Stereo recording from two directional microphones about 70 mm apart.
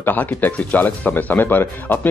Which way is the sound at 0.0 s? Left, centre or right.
Left.